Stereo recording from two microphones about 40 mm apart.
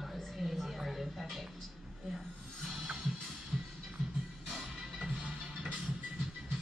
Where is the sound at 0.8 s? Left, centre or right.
Centre.